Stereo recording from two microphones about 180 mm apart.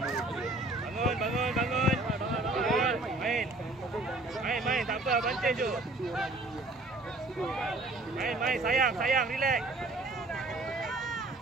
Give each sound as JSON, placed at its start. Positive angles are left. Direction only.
{"t": 0.0, "sound": "a sound", "side_deg": 0}
{"t": 7.4, "sound": "speech", "side_deg": 0}
{"t": 8.6, "sound": "speech", "side_deg": -50}
{"t": 10.8, "sound": "run", "side_deg": 0}